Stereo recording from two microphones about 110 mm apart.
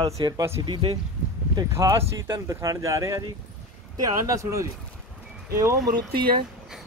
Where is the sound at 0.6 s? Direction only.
50° right (ahead or behind).